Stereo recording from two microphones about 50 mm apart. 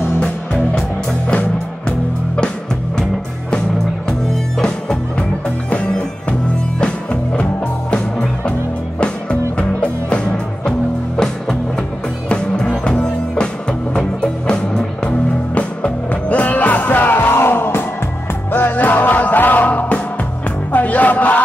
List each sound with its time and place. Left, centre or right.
1.3 s music: left
3.0 s music: centre
5.7 s music: left
9.6 s music: left
12.3 s music: centre